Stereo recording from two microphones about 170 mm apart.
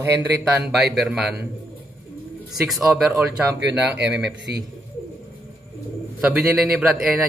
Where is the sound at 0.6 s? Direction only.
Centre (ahead or behind).